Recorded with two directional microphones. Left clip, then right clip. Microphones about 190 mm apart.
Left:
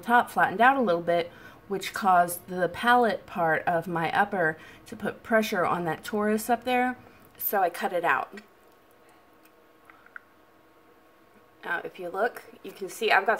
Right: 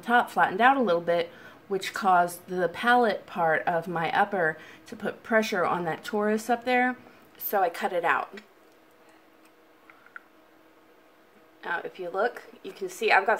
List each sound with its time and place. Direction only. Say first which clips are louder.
0.0 s a woman's voice: even; 5° left (ahead or behind)
10.1 s a sound: even; 5° left (ahead or behind)
11.6 s a woman's voice: even; 5° left (ahead or behind)